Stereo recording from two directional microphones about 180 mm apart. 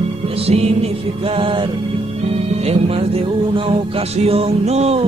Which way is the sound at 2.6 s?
35° right (ahead or behind).